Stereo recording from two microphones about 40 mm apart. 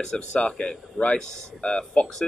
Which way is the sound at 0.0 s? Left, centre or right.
Centre.